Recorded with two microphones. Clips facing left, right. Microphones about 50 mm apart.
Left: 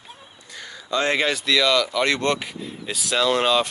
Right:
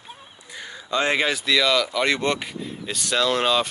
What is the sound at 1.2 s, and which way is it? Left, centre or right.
Speech, centre.